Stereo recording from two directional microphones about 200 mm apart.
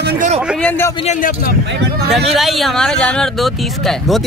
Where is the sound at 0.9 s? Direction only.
35° left (ahead or behind).